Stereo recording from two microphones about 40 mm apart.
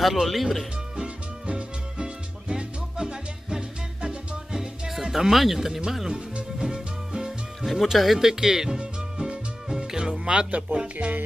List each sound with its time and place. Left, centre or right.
0.0 s speech: centre
0.9 s music: right
4.5 s music: centre
5.3 s speech: centre
6.6 s music: centre
7.6 s speech: centre
9.7 s music: centre; by 11.1 s right